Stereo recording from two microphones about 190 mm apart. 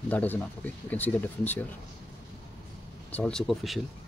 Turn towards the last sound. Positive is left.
turn(degrees=0)  # may be behind; listen again after turning